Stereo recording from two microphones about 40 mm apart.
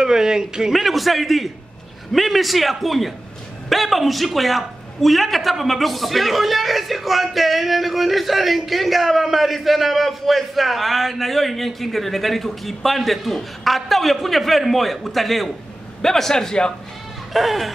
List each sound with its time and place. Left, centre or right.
0.0 s speech: centre
0.7 s a man's voice: centre
16.0 s a man's voice: centre
17.3 s bleat: centre